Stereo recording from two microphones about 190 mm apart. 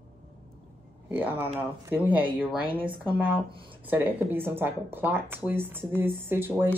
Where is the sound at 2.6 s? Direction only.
25° right (ahead or behind).